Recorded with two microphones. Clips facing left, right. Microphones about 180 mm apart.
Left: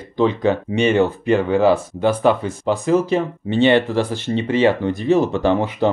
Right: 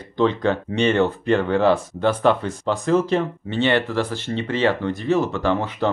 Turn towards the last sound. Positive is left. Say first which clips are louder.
# left 4 dB
turn(degrees=15)  # may be behind; listen again after turning